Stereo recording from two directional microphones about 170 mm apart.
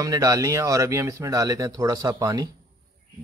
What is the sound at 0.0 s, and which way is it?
Speech, 20° right (ahead or behind).